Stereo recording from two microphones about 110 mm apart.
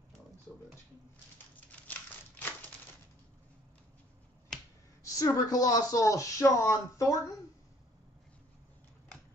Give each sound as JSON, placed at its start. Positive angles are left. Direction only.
{"t": 1.7, "sound": "typewriter", "side_deg": 15}
{"t": 4.5, "sound": "finger snapping", "side_deg": 5}
{"t": 5.0, "sound": "speech", "side_deg": 30}